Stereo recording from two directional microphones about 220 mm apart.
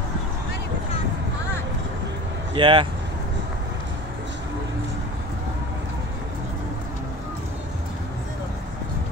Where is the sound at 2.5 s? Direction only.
20° right (ahead or behind).